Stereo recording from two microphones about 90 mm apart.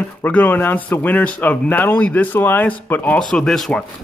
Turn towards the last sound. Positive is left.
turn(degrees=5)  # may be behind; listen again after turning